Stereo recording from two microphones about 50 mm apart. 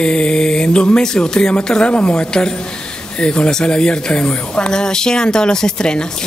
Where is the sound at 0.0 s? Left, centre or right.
Centre.